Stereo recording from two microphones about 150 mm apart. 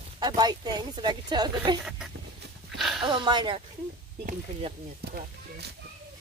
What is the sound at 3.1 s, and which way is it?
Speech, 30° right (ahead or behind).